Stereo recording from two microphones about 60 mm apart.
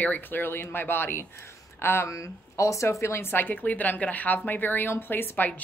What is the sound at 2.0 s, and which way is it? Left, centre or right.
Speech, left.